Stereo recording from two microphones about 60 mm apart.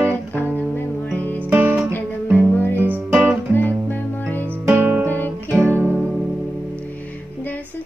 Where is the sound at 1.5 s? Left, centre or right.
Right.